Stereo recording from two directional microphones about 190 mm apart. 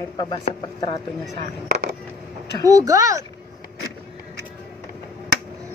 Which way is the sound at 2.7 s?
20° right (ahead or behind).